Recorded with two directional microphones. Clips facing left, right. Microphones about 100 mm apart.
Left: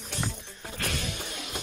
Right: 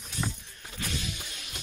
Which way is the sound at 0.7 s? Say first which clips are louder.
Left 3 dB; 60° left (ahead or behind).